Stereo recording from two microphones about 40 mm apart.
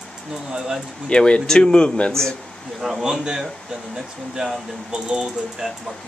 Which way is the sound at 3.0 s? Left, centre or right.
Centre.